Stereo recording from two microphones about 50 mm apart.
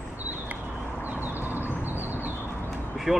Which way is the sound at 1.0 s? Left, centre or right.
Right.